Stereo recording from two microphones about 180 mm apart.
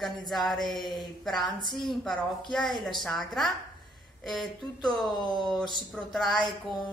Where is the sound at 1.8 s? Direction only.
Centre (ahead or behind).